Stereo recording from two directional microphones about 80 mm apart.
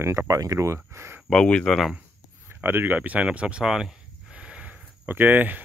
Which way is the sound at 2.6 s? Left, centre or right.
Right.